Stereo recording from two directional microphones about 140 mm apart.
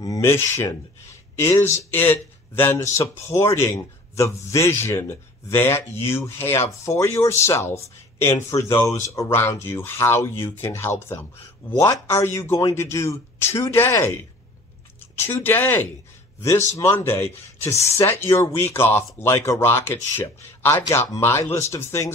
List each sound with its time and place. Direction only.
0.0 s a man's voice: 20° left (ahead or behind)
15.1 s speech: 15° left (ahead or behind)